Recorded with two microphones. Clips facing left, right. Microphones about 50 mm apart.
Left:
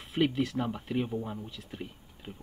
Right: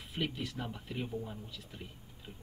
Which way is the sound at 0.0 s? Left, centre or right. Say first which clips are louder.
Left 9 dB; left.